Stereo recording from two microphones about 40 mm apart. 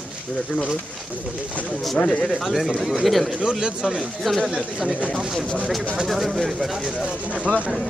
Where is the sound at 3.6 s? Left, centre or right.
Centre.